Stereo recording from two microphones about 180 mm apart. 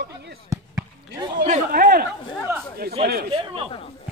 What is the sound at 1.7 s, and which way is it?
Speech, 55° right (ahead or behind).